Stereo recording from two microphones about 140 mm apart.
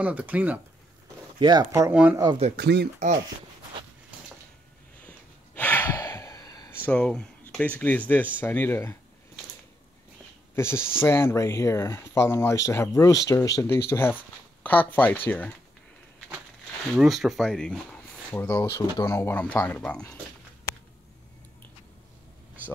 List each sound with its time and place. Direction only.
0.0 s speech: 10° right (ahead or behind)
1.4 s speech: 30° right (ahead or behind)
2.5 s speech: 75° right (ahead or behind)
5.0 s gasp: 15° left (ahead or behind)
6.9 s speech: 5° left (ahead or behind)
10.5 s speech: 20° left (ahead or behind)
16.9 s speech: centre (ahead or behind)